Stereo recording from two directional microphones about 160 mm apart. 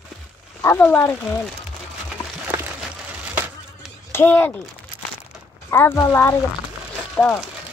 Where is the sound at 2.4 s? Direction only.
15° right (ahead or behind).